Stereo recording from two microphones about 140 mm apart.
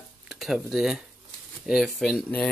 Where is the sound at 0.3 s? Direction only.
Centre (ahead or behind).